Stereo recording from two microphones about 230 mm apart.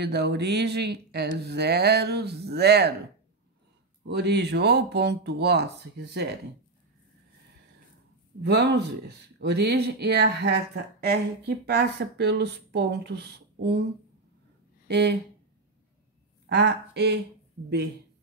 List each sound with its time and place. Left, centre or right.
0.0 s speech: right
4.0 s speech: right
8.4 s speech: right
16.4 s a woman's voice: right